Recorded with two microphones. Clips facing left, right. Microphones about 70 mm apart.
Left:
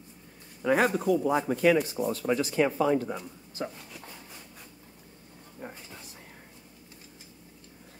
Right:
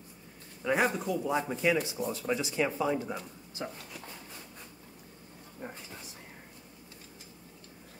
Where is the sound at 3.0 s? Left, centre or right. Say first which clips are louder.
Left 2 dB; centre.